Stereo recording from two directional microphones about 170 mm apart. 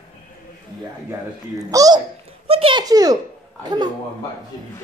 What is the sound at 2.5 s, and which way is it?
A woman's voice, 30° right (ahead or behind).